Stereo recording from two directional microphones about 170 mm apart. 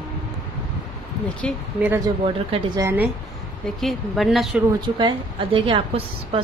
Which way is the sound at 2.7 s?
15° right (ahead or behind).